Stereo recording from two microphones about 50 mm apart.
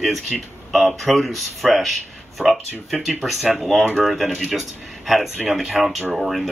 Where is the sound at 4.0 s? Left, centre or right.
Centre.